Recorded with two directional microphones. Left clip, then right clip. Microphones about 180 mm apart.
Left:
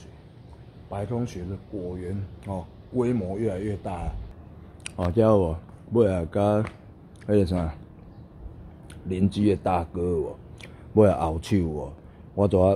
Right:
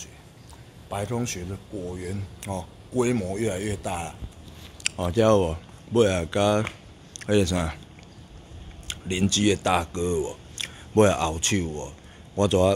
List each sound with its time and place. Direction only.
0.8 s a man's voice: 20° right (ahead or behind)
5.1 s speech: 5° left (ahead or behind)
8.8 s speech: centre (ahead or behind)